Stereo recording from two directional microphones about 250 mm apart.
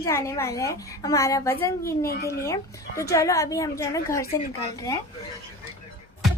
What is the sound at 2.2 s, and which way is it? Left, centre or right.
A woman's voice, centre.